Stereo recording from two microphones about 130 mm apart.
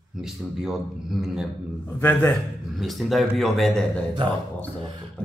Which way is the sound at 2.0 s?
15° left (ahead or behind).